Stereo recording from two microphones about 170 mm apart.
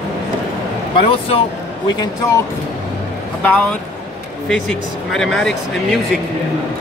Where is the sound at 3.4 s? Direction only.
5° left (ahead or behind).